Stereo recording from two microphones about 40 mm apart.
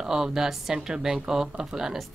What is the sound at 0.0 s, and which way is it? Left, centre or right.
Speech, centre.